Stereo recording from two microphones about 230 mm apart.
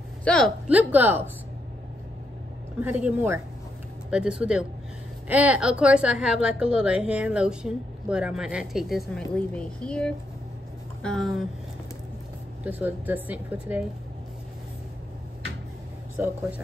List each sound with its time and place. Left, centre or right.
0.2 s a woman's voice: centre
2.8 s a woman's voice: centre
12.6 s speech: centre
16.2 s speech: centre